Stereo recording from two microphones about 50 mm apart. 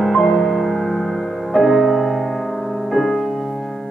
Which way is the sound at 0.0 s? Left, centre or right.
Centre.